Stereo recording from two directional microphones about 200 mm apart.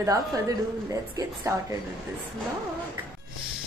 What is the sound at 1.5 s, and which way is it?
Speech, 15° right (ahead or behind).